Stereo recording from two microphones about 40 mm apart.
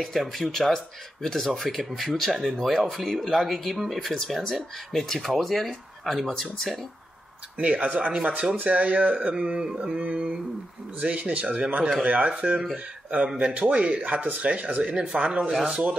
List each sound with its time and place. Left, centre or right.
0.3 s speech: centre
7.5 s speech: right
13.4 s speech: right
14.0 s speech: right
15.5 s speech: centre